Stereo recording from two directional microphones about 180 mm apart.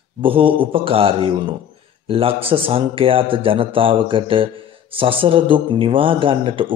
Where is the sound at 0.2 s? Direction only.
30° right (ahead or behind).